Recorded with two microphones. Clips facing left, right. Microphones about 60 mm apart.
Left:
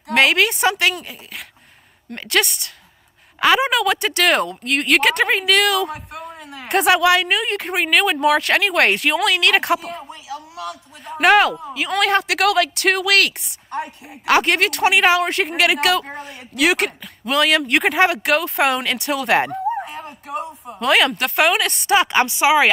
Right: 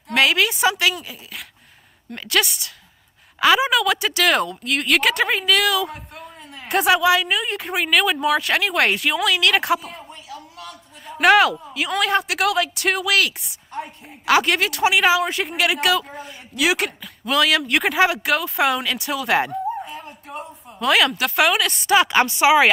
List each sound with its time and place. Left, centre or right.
0.1 s speech: centre
5.9 s a sound: left
6.7 s a woman's voice: centre
7.2 s a woman's voice: left
7.5 s speech: centre
10.7 s a sound: centre
11.7 s speech: centre
15.1 s a woman's voice: left
16.2 s speech: centre
20.0 s a sound: centre
20.8 s speech: centre